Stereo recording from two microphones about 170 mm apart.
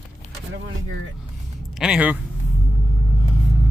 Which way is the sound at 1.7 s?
5° right (ahead or behind).